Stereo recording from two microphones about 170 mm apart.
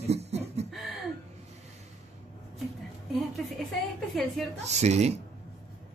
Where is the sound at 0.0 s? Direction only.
40° right (ahead or behind).